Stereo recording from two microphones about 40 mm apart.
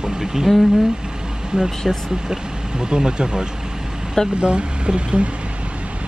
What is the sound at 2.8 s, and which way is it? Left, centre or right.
Speech, right.